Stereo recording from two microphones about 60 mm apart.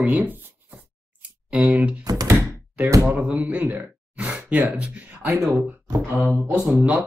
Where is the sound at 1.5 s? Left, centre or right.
Right.